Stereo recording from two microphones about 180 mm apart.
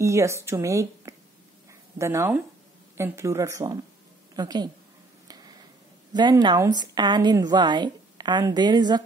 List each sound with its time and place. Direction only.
0.0 s a woman's voice: 15° right (ahead or behind)
6.1 s a woman's voice: 25° right (ahead or behind)